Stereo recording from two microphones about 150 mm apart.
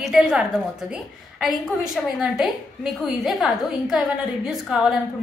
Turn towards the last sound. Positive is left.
turn(degrees=-5)  # may be behind; listen again after turning